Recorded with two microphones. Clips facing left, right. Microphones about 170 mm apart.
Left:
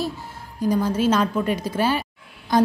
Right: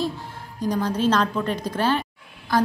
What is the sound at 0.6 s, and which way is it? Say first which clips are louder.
A woman's voice: left 3 dB; 5° left (ahead or behind).